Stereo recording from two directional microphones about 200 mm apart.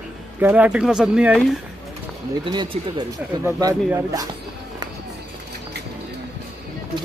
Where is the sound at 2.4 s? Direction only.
20° right (ahead or behind).